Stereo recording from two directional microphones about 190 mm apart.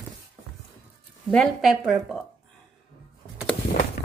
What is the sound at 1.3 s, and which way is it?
Speech, centre (ahead or behind).